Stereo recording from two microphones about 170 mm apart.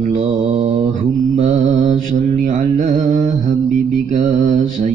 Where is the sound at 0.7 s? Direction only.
40° right (ahead or behind).